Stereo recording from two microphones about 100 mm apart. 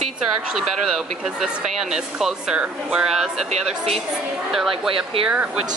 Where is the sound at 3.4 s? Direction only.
90° right.